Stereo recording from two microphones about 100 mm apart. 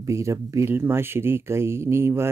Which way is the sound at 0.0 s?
30° right (ahead or behind).